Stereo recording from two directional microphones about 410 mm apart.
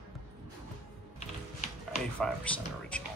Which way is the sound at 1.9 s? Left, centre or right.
Centre.